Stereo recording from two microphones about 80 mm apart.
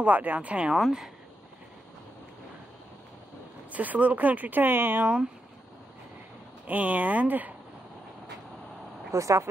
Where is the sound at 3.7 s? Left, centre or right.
Centre.